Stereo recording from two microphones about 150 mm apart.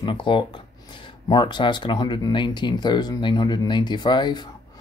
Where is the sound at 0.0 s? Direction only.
35° left (ahead or behind).